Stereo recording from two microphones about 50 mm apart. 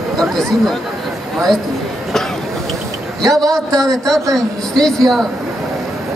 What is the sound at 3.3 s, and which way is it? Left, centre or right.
A woman's voice, centre.